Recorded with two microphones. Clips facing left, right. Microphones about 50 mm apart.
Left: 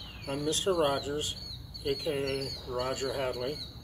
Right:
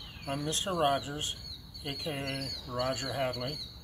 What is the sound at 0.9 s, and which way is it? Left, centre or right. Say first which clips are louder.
Speech: left 2 dB; right.